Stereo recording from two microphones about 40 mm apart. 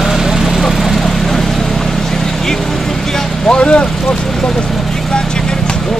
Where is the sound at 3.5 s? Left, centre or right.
Left.